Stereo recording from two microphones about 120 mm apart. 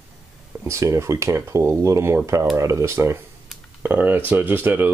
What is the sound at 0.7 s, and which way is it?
Speech, 25° right (ahead or behind).